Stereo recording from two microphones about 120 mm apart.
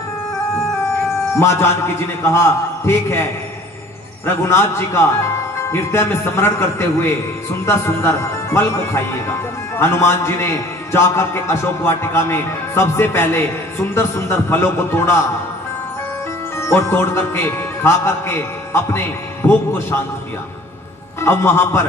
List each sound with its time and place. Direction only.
1.4 s speech: 20° left (ahead or behind)
4.5 s speech: 20° left (ahead or behind)
16.5 s speech: 20° left (ahead or behind)
21.2 s speech: 20° left (ahead or behind)